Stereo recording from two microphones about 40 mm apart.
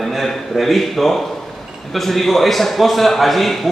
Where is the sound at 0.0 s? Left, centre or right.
Centre.